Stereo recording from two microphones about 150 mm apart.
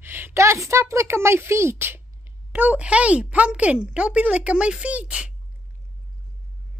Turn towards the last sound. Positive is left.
turn(degrees=-10)  # may be behind; listen again after turning